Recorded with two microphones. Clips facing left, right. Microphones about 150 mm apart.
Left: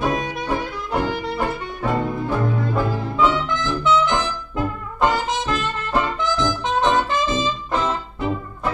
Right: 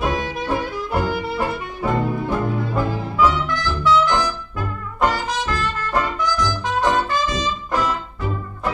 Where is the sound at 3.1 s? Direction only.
20° left (ahead or behind).